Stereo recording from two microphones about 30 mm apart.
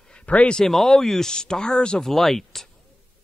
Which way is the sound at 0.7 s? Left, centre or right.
Centre.